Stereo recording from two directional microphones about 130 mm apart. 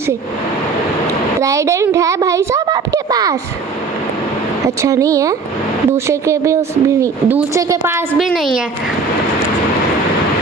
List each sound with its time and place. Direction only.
1.4 s a woman's voice: 25° right (ahead or behind)
4.6 s speech: 25° right (ahead or behind)
8.3 s a woman's voice: centre (ahead or behind)